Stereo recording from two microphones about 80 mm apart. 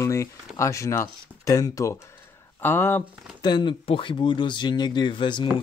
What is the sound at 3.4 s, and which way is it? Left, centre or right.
Speech, left.